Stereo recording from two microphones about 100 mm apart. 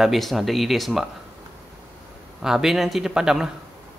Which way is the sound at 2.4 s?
5° right (ahead or behind).